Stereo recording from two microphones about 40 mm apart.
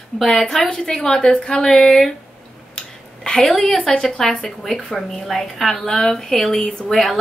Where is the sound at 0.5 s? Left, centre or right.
Centre.